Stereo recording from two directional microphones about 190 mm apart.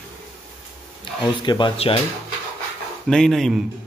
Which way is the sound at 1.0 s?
25° left (ahead or behind).